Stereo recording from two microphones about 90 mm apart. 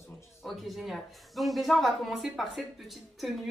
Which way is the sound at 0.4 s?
Centre (ahead or behind).